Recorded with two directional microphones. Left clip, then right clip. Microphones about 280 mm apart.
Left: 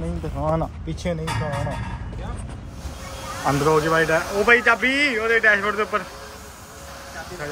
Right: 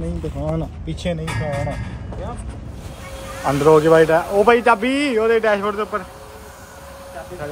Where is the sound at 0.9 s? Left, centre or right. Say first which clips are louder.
Right 5 dB; centre.